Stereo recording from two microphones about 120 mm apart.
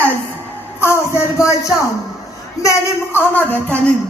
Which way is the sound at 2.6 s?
25° left (ahead or behind).